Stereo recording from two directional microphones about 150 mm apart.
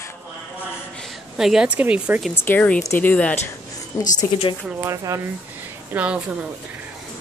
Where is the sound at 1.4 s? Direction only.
5° right (ahead or behind).